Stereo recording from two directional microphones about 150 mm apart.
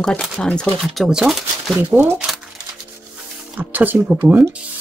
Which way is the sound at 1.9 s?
15° right (ahead or behind).